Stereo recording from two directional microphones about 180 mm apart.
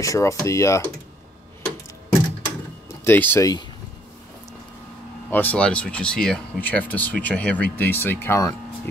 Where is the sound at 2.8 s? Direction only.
10° left (ahead or behind).